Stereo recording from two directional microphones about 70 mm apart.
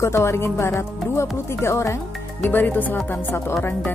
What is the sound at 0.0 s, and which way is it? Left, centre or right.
Speech, left.